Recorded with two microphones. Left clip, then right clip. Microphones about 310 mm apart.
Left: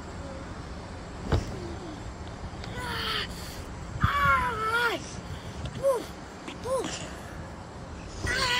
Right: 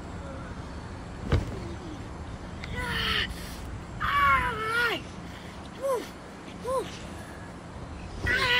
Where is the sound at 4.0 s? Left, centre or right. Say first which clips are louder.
Right 1 dB; centre.